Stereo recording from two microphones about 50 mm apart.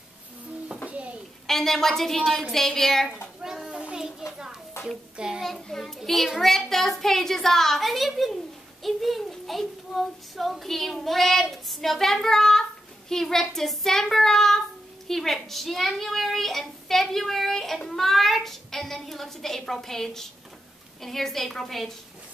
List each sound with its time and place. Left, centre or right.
0.8 s a sound: right
1.5 s child singing: centre
3.6 s a sound: centre
5.1 s a child's voice: centre
5.4 s a child's voice: centre
13.1 s child singing: centre
15.0 s a child's voice: centre